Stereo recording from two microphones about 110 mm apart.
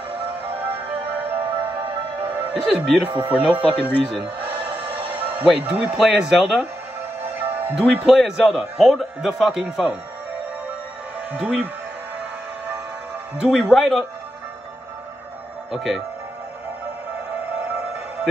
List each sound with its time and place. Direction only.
0.6 s music: 15° right (ahead or behind)
3.1 s speech: 15° right (ahead or behind)
7.7 s speech: 5° right (ahead or behind)
11.3 s speech: 15° right (ahead or behind)
13.4 s speech: 5° right (ahead or behind)
15.7 s speech: 5° right (ahead or behind)